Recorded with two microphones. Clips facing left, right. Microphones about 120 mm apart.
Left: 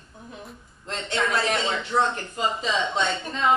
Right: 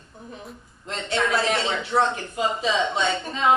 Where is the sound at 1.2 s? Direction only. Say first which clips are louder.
Right 1 dB; 5° right (ahead or behind).